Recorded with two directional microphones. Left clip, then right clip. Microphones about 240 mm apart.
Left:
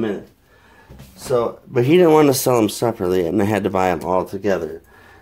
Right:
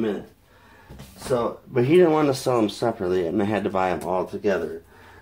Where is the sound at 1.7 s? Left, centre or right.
Left.